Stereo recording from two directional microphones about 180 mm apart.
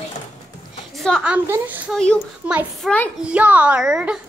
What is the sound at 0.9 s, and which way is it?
Speech, centre (ahead or behind).